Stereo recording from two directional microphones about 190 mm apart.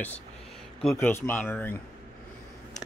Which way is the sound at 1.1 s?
10° left (ahead or behind).